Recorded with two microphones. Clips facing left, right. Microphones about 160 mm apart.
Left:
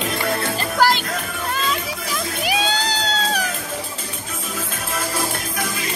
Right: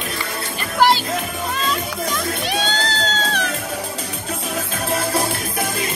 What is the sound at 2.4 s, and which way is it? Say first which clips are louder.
Music: left 1 dB; 10° left (ahead or behind).